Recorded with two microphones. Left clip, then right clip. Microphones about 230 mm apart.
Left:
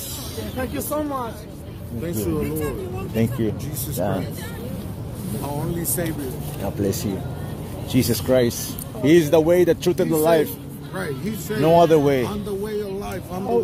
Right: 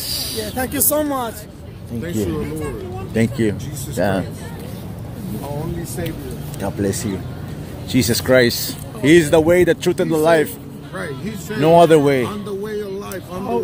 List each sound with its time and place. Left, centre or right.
0.6 s speech: right
2.0 s speech: centre
3.2 s speech: centre
6.6 s speech: centre
11.0 s speech: centre
11.6 s speech: centre
12.4 s a sound: centre